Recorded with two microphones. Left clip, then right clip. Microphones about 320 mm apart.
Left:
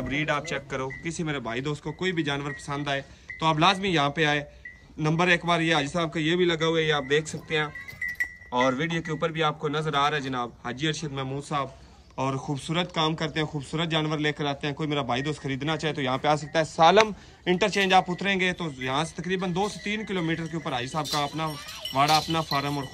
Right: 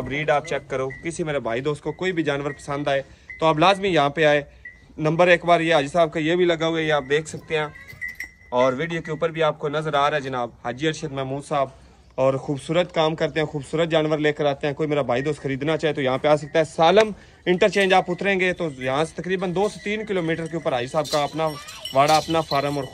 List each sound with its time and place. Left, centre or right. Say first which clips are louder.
0.1 s a man's voice: right 6 dB; centre